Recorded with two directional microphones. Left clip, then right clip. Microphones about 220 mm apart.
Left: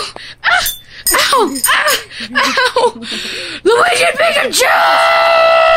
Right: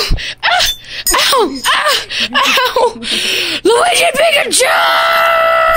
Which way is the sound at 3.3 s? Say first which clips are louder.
Even; 15° right (ahead or behind).